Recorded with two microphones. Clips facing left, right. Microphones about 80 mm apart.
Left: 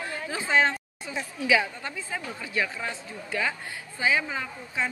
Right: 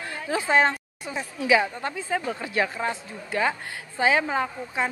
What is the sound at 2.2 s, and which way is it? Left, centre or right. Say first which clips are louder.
Speech: right 4 dB; right.